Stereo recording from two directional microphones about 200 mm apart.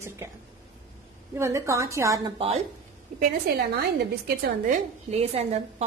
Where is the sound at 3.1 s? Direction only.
40° right (ahead or behind).